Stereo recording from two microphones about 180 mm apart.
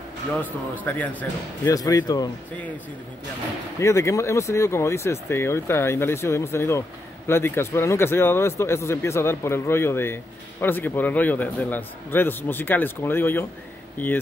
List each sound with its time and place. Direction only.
0.8 s speech: 10° left (ahead or behind)
1.6 s speech: 20° left (ahead or behind)
3.8 s speech: 15° left (ahead or behind)